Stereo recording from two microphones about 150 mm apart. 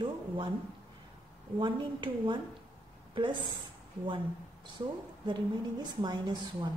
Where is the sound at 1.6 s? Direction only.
30° right (ahead or behind).